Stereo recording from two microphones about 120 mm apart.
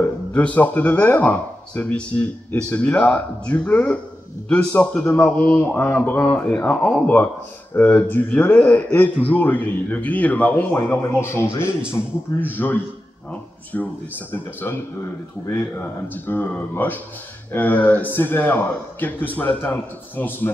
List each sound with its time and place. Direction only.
0.3 s speech: 10° left (ahead or behind)